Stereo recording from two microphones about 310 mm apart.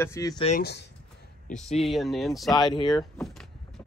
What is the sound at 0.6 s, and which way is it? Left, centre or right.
Speech, left.